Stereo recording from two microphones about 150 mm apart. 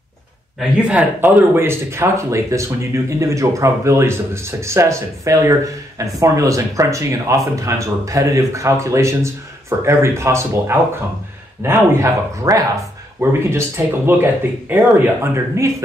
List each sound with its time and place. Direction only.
0.6 s speech: 10° right (ahead or behind)